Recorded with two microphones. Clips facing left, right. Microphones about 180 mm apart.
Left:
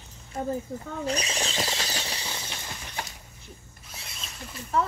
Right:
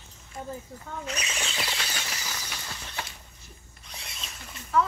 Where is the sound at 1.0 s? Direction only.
35° left (ahead or behind).